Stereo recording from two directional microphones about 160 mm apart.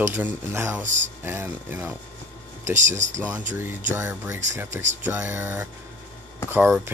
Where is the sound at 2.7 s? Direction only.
50° right (ahead or behind).